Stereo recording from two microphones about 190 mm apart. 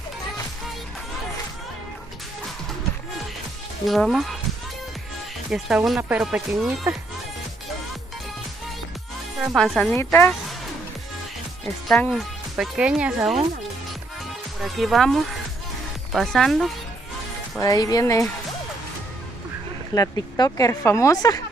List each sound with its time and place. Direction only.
3.8 s speech: centre (ahead or behind)
5.5 s speech: 5° right (ahead or behind)
9.5 s speech: 5° left (ahead or behind)
11.9 s speech: 5° left (ahead or behind)
14.6 s speech: centre (ahead or behind)
17.6 s speech: 20° left (ahead or behind)
19.9 s speech: 20° left (ahead or behind)